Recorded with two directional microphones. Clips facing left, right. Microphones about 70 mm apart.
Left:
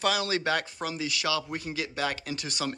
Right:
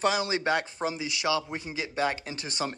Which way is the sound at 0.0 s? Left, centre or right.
Right.